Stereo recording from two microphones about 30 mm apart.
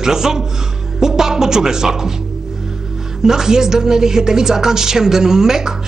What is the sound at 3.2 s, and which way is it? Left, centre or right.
A woman's voice, centre.